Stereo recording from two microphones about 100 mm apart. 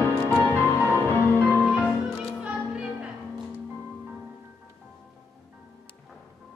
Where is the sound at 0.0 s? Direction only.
20° left (ahead or behind).